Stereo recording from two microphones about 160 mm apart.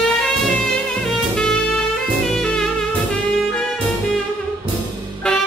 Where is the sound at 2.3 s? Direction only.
5° left (ahead or behind).